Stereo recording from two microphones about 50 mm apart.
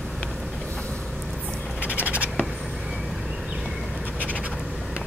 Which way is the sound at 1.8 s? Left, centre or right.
Right.